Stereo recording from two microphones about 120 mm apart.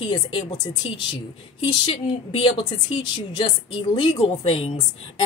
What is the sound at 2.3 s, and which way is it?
Speech, 45° left (ahead or behind).